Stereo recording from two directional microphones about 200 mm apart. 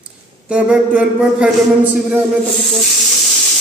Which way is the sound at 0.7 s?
5° right (ahead or behind).